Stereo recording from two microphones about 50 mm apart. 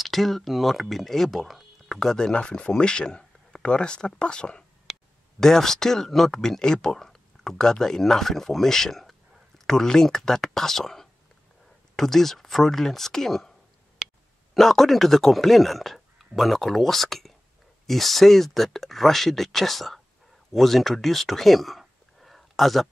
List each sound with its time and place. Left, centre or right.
0.0 s speech: centre
2.3 s speech: centre
14.5 s speech: centre